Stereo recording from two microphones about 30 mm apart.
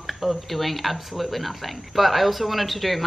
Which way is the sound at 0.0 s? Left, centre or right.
Centre.